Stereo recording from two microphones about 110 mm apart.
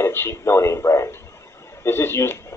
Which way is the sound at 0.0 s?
20° left (ahead or behind).